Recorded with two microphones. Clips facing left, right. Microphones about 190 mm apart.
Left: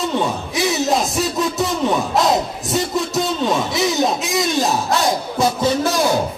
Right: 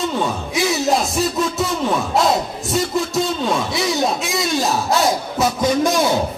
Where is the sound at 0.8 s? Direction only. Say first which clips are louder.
Right 1 dB; centre (ahead or behind).